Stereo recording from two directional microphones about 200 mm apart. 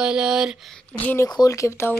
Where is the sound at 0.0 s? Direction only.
5° right (ahead or behind).